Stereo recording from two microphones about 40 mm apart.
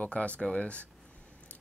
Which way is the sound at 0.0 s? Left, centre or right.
Left.